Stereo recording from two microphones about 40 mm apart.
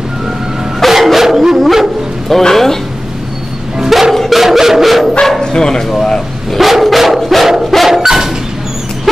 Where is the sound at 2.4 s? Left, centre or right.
Centre.